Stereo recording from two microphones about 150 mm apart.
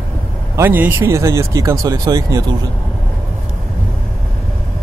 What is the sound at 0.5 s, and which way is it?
Speech, 15° right (ahead or behind).